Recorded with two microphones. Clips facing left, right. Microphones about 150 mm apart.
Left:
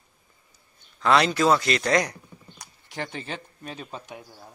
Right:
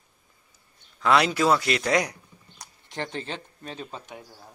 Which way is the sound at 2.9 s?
10° left (ahead or behind).